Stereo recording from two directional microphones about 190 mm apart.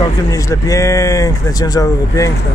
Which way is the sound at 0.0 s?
15° left (ahead or behind).